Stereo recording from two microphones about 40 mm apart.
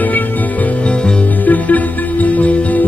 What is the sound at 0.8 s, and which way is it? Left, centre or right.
Music, left.